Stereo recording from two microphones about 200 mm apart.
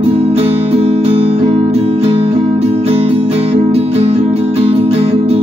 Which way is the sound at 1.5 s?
30° right (ahead or behind).